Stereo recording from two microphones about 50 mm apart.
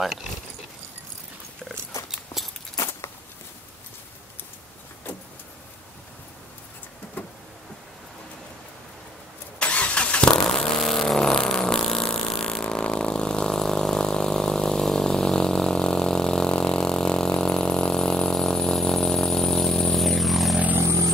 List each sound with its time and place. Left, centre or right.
0.0 s speech: centre
7.2 s a sound: left
9.6 s vehicle: left
10.3 s vehicle: centre